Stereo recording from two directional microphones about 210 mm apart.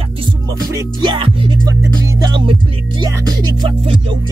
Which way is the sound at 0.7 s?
20° right (ahead or behind).